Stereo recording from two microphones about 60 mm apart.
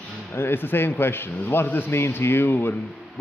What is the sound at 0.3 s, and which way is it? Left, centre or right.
Speech, left.